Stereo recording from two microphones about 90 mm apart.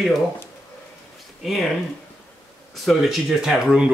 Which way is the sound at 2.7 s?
Centre (ahead or behind).